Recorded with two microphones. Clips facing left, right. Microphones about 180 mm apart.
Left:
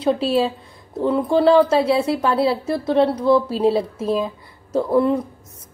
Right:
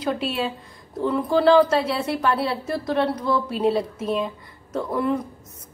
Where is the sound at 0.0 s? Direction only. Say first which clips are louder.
Left 7 dB; 30° left (ahead or behind).